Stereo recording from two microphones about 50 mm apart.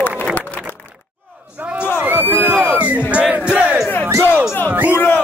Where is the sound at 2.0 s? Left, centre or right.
Right.